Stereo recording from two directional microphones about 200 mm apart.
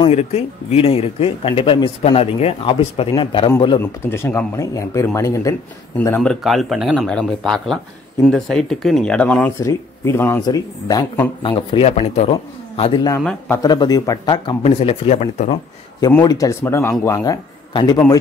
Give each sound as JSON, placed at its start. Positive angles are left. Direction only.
{"t": 0.0, "sound": "speech", "side_deg": 30}
{"t": 3.8, "sound": "speech", "side_deg": 10}
{"t": 13.2, "sound": "speech", "side_deg": 5}
{"t": 13.6, "sound": "speech", "side_deg": 20}
{"t": 16.1, "sound": "a man's voice", "side_deg": 20}